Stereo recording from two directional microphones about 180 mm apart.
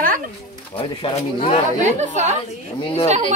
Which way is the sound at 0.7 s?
30° left (ahead or behind).